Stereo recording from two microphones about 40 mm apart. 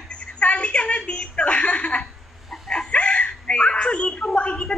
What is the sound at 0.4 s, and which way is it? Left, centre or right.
Chuckle, left.